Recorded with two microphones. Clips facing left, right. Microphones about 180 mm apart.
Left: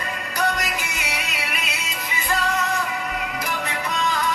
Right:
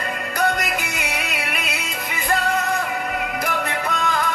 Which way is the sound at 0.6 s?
55° right (ahead or behind).